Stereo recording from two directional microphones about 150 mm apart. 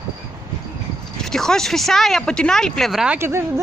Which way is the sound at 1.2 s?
5° left (ahead or behind).